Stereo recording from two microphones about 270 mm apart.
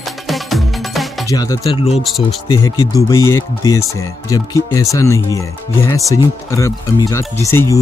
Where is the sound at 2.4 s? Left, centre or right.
Centre.